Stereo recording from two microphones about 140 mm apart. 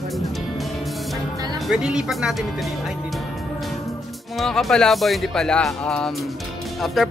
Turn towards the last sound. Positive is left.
turn(degrees=0)  # may be behind; listen again after turning